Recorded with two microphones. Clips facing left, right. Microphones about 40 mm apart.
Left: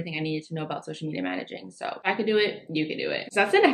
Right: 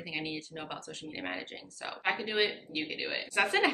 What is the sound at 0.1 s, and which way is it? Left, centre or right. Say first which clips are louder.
A woman's voice: left 6 dB; centre.